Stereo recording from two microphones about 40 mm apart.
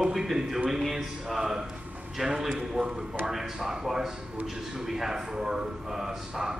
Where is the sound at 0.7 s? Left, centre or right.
Centre.